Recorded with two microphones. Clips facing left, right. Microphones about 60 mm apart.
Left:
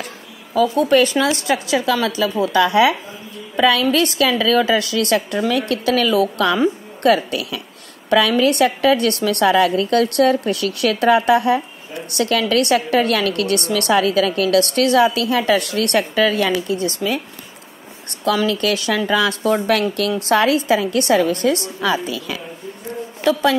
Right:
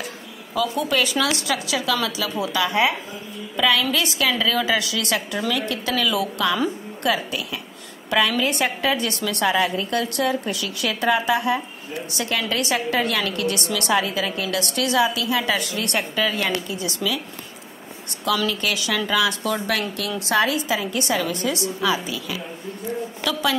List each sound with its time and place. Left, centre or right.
0.6 s a woman's voice: left
2.6 s speech: left
3.5 s a woman's voice: left
7.0 s a woman's voice: left
16.6 s a woman's voice: left
18.5 s a woman's voice: left